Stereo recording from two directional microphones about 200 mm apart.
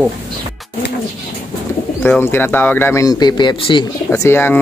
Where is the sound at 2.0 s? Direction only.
10° left (ahead or behind).